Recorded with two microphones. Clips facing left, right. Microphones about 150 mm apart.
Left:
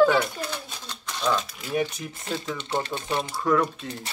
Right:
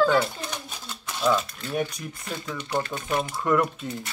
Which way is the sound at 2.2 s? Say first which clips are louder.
Left 3 dB; 25° left (ahead or behind).